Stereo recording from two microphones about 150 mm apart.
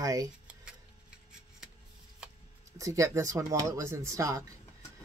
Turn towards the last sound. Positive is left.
turn(degrees=-20)  # may be behind; listen again after turning